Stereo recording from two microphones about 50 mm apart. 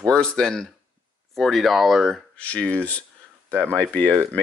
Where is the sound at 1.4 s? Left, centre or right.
Centre.